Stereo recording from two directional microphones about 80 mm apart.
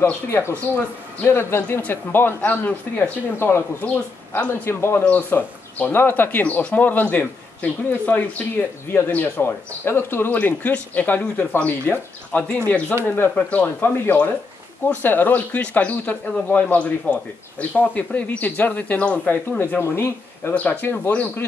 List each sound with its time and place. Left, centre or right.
0.3 s a man's voice: left
3.8 s a man's voice: centre
4.5 s a man's voice: left
5.0 s a man's voice: centre
19.8 s speech: left
20.5 s a man's voice: left